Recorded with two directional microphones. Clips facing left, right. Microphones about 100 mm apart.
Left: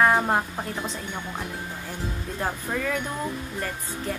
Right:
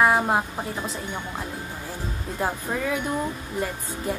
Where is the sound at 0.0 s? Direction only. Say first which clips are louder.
Right 1 dB; 5° right (ahead or behind).